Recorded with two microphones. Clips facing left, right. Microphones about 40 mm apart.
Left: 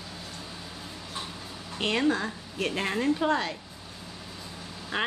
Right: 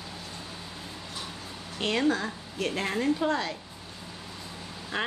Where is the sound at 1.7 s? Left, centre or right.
Centre.